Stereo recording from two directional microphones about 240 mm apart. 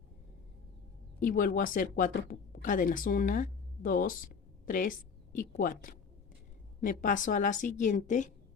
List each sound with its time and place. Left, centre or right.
1.2 s a woman's voice: left